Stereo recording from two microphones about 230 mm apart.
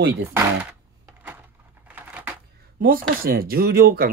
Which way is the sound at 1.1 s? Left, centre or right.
Centre.